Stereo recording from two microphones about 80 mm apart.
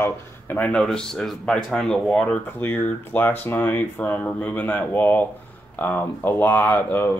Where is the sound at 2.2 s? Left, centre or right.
Left.